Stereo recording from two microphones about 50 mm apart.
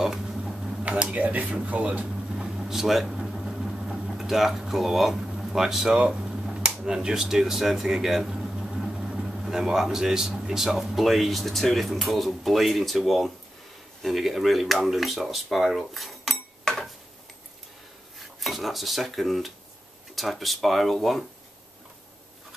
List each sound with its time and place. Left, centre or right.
0.0 s a sound: centre
0.8 s speech: right
1.2 s a man's voice: right
2.0 s a sound: centre
4.1 s speech: centre
5.9 s speech: centre
16.7 s a sound: centre
18.2 s dishes: centre
20.2 s speech: centre